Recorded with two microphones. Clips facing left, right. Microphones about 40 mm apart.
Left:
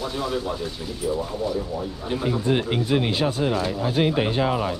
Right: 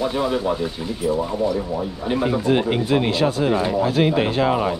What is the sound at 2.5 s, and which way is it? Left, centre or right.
Speech, right.